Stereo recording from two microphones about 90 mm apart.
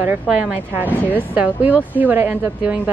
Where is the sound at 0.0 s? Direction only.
15° right (ahead or behind).